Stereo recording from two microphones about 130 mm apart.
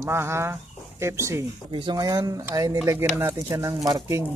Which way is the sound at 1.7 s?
40° right (ahead or behind).